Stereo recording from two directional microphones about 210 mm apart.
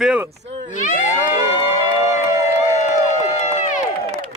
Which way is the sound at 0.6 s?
35° left (ahead or behind).